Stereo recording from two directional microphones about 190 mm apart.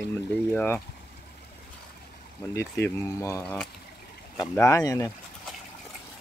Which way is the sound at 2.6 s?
15° left (ahead or behind).